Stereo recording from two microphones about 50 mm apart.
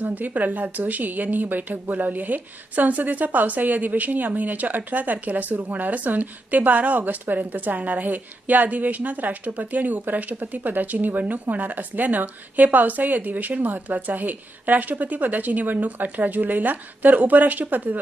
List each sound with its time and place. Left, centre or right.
0.0 s a woman's voice: right